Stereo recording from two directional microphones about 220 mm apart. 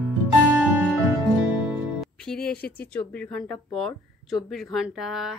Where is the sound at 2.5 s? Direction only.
45° left (ahead or behind).